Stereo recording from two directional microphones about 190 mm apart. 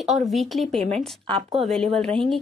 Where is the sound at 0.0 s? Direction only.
Centre (ahead or behind).